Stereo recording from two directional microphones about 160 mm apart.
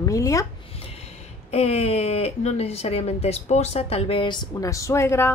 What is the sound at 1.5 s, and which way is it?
Speech, 40° left (ahead or behind).